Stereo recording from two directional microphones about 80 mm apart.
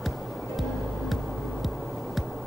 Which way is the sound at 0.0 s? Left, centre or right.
Centre.